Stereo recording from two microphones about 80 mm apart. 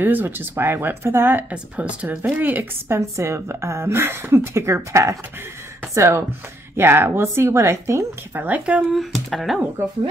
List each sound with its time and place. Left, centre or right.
0.0 s speech: right
1.5 s speech: centre
2.9 s speech: right; by 8.8 s centre
8.9 s speech: centre
9.8 s speech: right